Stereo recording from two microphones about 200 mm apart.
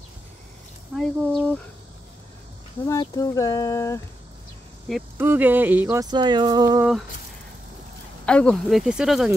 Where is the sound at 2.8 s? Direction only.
20° left (ahead or behind).